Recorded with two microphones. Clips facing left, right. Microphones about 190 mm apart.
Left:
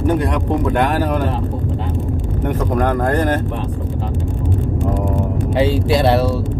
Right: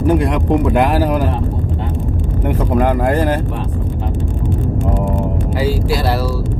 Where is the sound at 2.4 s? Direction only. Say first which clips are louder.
Right 2 dB; 10° right (ahead or behind).